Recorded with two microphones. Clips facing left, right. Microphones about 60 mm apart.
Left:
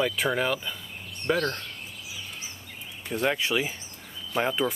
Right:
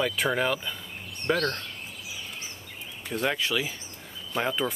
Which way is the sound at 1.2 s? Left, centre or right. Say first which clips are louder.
Even; centre.